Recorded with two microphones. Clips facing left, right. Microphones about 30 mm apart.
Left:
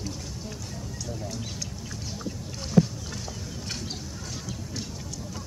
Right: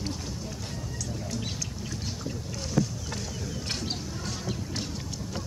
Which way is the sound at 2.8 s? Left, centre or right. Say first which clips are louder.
Left 6 dB; centre.